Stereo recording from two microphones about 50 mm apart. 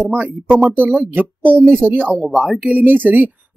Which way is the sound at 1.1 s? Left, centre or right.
Right.